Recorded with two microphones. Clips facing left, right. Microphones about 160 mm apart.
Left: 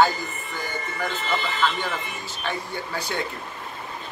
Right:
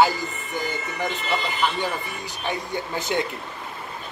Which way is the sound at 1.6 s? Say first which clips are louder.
Right 1 dB; 15° right (ahead or behind).